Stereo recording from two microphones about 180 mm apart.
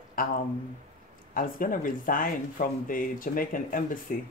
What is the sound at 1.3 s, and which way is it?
Speech, 50° left (ahead or behind).